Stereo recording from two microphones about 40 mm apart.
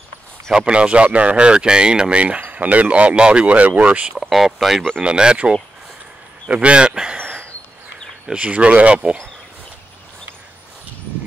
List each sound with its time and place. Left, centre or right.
0.6 s speech: right
4.2 s speech: centre
5.0 s speech: right
6.5 s speech: right
7.2 s chop: right
8.3 s speech: right